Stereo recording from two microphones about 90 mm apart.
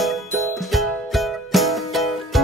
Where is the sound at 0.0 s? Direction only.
Centre (ahead or behind).